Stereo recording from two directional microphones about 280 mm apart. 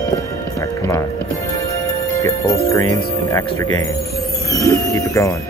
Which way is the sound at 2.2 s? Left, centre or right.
Centre.